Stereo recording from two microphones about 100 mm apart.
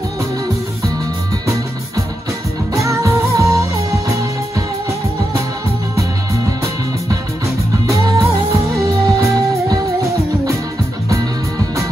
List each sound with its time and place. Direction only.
2.7 s music: 30° right (ahead or behind)
7.8 s music: 30° right (ahead or behind)